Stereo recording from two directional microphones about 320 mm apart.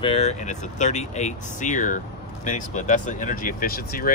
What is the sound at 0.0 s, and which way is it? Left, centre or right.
Speech, centre.